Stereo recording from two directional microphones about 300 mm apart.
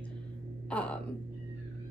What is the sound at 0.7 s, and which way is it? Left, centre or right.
Speech, centre.